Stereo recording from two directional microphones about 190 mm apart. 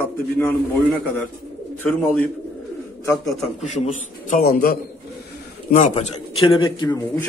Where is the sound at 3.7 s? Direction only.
40° left (ahead or behind).